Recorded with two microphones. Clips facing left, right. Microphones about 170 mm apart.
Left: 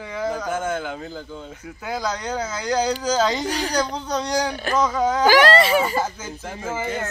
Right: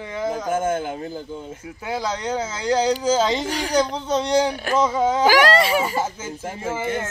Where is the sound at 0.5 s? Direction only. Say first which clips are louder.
Right 3 dB; 45° right (ahead or behind).